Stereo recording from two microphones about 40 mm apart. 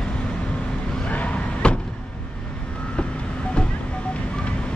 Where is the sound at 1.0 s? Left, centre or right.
Left.